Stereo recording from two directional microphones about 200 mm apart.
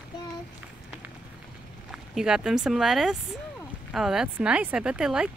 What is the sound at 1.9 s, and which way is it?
Speech, 5° right (ahead or behind).